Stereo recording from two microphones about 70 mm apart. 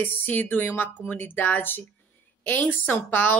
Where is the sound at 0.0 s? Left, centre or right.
Left.